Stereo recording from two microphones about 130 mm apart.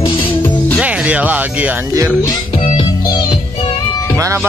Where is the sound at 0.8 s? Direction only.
10° right (ahead or behind).